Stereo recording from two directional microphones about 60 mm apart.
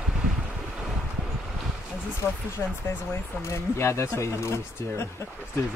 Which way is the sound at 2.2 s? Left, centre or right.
Left.